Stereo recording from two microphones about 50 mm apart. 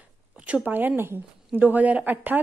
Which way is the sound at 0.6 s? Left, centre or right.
Right.